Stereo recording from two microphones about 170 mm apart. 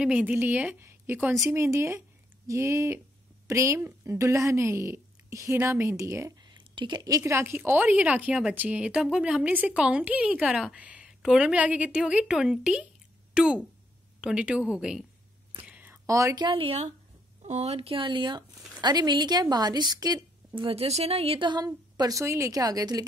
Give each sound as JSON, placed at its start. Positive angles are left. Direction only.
{"t": 0.0, "sound": "a woman's voice", "side_deg": -10}